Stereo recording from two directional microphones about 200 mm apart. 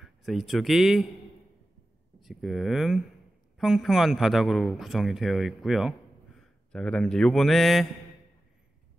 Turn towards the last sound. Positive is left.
turn(degrees=0)  # may be behind; listen again after turning